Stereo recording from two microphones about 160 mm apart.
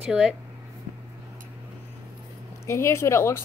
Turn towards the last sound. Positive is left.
turn(degrees=15)  # may be behind; listen again after turning